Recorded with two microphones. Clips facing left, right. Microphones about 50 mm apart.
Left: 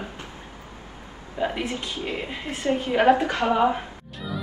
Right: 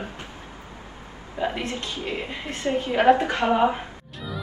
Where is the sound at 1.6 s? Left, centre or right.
Centre.